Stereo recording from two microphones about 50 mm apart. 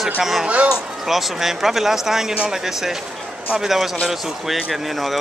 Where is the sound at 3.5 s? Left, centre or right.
Centre.